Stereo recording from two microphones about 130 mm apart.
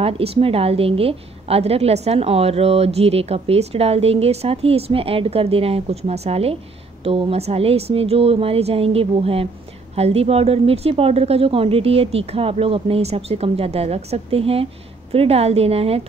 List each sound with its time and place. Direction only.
0.0 s a woman's voice: 50° right (ahead or behind)